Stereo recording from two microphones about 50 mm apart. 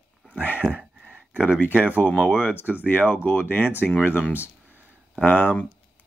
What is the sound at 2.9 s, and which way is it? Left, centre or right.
Speech, left.